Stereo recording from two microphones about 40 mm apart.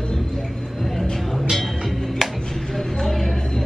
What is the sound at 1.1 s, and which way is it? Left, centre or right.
Music, centre.